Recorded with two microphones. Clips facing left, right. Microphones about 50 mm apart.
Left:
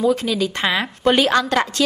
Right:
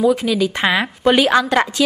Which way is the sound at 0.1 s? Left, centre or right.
Centre.